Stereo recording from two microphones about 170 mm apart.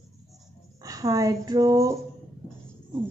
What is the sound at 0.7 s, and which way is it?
Speech, 20° right (ahead or behind).